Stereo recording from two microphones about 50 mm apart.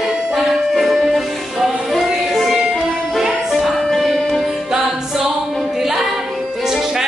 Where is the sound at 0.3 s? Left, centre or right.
Centre.